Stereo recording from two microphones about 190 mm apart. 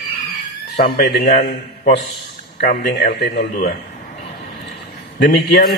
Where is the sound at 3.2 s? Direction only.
55° left (ahead or behind).